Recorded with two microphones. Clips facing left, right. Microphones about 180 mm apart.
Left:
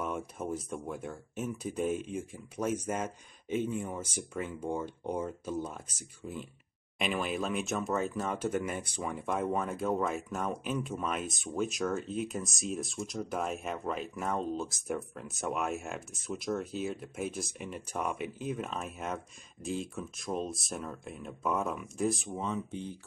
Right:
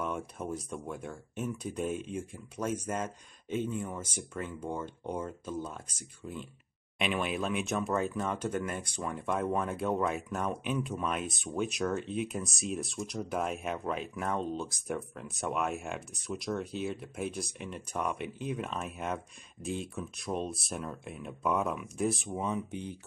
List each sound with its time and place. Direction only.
0.0 s speech: 5° left (ahead or behind)
22.4 s speech: 15° right (ahead or behind)